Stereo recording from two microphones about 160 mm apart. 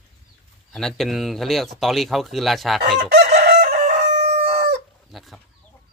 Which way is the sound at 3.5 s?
75° right (ahead or behind).